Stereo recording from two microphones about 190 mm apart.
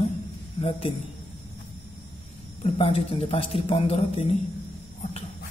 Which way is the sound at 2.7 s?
30° left (ahead or behind).